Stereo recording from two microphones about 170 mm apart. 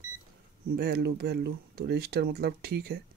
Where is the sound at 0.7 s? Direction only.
65° right (ahead or behind).